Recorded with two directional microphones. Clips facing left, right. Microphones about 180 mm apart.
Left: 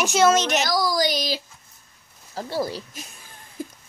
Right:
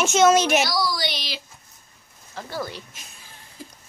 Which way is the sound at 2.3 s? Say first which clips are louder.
Left 5 dB; 30° left (ahead or behind).